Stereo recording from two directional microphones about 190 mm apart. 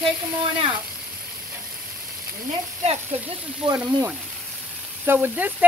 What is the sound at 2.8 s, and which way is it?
Speech, 35° right (ahead or behind).